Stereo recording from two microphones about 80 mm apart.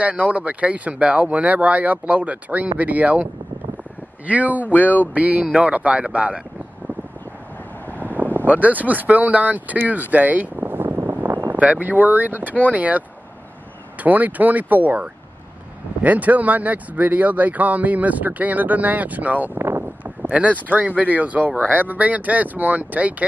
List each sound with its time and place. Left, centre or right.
0.0 s speech: centre
4.3 s speech: centre
4.7 s a sound: left
5.1 s speech: centre
8.1 s a sound: right
8.5 s speech: centre
11.4 s speech: centre
14.0 s speech: centre
19.6 s a sound: right
20.2 s speech: centre